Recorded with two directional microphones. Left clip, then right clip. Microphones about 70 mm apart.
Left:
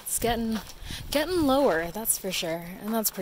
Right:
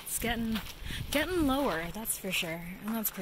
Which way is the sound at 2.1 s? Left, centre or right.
Left.